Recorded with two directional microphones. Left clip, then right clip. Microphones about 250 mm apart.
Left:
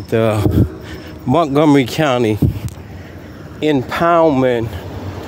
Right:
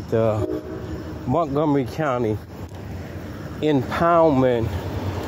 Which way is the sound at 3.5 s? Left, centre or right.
Left.